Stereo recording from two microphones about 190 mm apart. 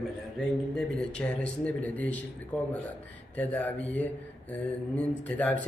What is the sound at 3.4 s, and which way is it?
A man's voice, 10° left (ahead or behind).